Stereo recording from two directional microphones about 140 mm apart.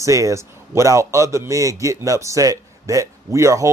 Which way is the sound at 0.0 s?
20° right (ahead or behind).